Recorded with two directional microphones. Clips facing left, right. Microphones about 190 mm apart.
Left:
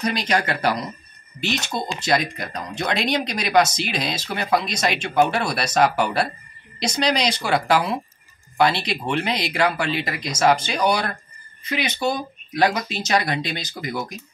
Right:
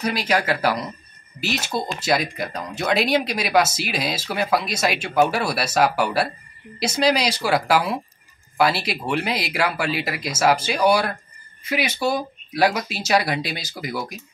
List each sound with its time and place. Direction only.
0.0 s speech: 5° right (ahead or behind)